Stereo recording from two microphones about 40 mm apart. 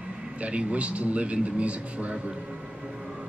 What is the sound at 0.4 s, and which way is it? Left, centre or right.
A man's voice, right.